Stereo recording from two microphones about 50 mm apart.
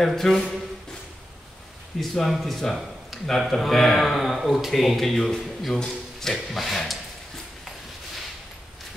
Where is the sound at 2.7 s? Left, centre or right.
Centre.